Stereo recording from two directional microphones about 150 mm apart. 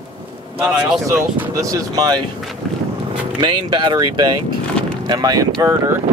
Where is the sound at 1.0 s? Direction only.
15° right (ahead or behind).